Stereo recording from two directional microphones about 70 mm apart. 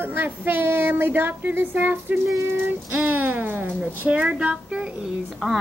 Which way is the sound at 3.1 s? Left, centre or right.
Right.